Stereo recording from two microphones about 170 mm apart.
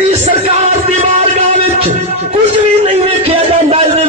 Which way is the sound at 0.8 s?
40° right (ahead or behind).